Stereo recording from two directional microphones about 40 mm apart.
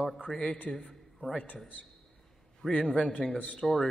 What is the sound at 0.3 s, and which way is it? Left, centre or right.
Speech, centre.